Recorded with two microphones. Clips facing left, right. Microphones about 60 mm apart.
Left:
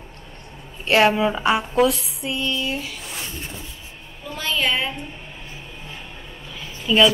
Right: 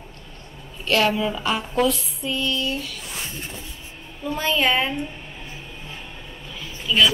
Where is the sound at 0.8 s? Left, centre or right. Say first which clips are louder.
Left 4 dB; left.